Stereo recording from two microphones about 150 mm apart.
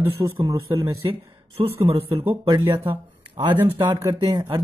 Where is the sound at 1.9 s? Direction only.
35° right (ahead or behind).